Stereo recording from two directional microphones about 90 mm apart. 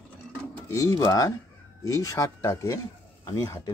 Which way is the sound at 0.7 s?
40° left (ahead or behind).